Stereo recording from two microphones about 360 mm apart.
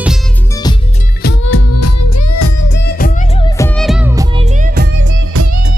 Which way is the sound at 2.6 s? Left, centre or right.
Left.